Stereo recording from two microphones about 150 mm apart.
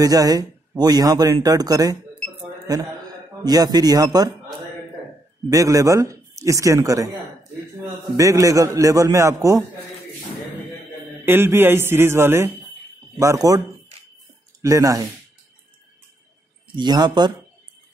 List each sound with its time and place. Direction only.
0.0 s speech: 25° right (ahead or behind)
3.4 s speech: 25° right (ahead or behind)
5.5 s speech: 20° right (ahead or behind)
8.2 s speech: 20° right (ahead or behind)
11.2 s a man's voice: 15° right (ahead or behind)
14.6 s speech: 20° right (ahead or behind)
16.7 s speech: 30° right (ahead or behind)